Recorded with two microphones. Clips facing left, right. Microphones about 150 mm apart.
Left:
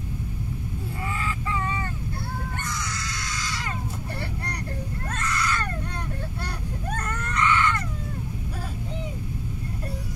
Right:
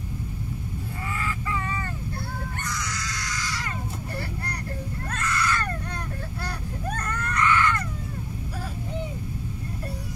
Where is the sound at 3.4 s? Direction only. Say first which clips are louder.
Left 1 dB; 25° left (ahead or behind).